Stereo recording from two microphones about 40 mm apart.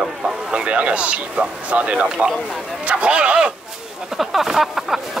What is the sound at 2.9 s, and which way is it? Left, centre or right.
Speech, right.